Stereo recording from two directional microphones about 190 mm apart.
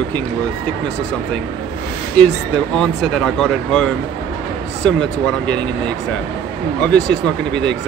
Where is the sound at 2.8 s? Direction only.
Centre (ahead or behind).